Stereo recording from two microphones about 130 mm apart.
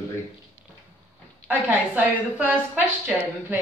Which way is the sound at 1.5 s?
15° right (ahead or behind).